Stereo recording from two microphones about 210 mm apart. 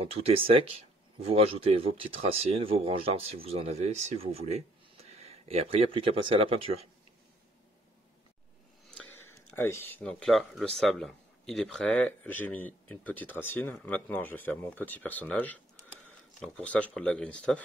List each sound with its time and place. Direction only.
0.0 s speech: 30° right (ahead or behind)
8.9 s speech: 10° left (ahead or behind)